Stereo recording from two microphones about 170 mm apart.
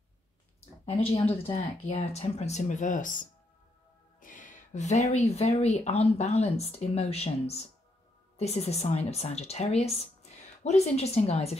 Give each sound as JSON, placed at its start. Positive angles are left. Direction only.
{"t": 0.8, "sound": "speech", "side_deg": 35}